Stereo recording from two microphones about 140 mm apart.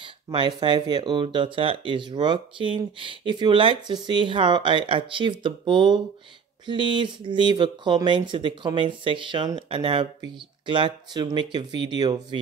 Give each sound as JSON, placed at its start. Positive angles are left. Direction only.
{"t": 0.0, "sound": "speech", "side_deg": -35}